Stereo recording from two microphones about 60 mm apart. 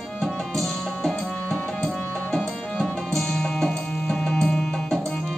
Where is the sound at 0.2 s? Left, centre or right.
Centre.